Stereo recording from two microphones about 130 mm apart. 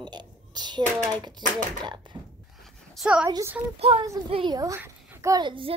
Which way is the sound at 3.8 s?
45° right (ahead or behind).